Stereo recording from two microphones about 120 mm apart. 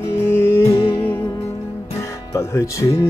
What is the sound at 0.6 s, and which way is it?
Music, 50° left (ahead or behind).